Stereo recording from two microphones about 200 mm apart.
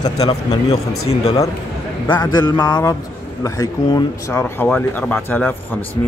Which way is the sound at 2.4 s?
20° left (ahead or behind).